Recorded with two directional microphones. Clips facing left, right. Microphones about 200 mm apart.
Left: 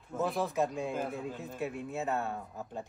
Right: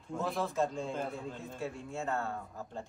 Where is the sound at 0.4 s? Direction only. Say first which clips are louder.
Right 1 dB; 15° left (ahead or behind).